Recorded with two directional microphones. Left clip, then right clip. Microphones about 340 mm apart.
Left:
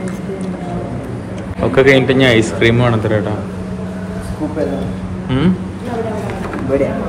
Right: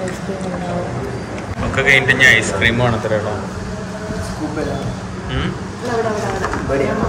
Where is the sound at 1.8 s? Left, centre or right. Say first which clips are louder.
Left 1 dB; centre.